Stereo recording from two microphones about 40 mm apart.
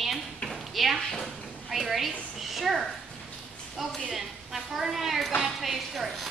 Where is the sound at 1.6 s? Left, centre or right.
Centre.